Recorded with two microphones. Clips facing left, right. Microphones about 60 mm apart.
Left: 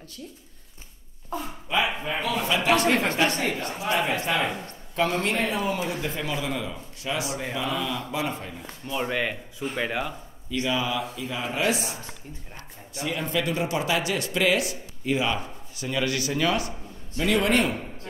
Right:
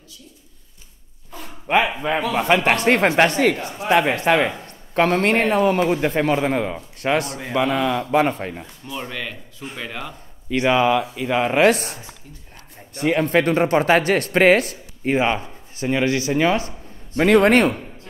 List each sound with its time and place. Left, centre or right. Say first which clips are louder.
1.7 s speech: right 7 dB; right
3.2 s speech: right 8 dB; right
4.9 s speech: right 7 dB; right
9.0 s speech: left 3 dB; centre
10.5 s speech: right 9 dB; right
17.2 s speech: right 8 dB; right